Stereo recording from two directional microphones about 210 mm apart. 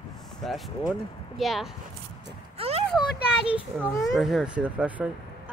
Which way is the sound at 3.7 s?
10° left (ahead or behind).